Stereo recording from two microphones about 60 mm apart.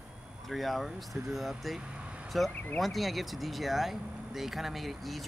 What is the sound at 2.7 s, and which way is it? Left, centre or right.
Speech, centre.